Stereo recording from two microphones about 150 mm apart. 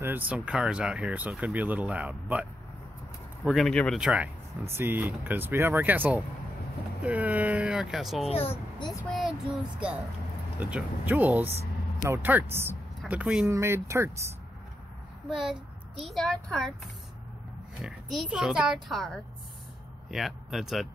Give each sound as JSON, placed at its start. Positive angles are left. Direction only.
{"t": 0.0, "sound": "speech", "side_deg": -10}
{"t": 3.4, "sound": "speech", "side_deg": 0}
{"t": 8.3, "sound": "speech", "side_deg": 40}
{"t": 10.6, "sound": "speech", "side_deg": -10}
{"t": 13.5, "sound": "speech", "side_deg": -20}
{"t": 15.2, "sound": "speech", "side_deg": 0}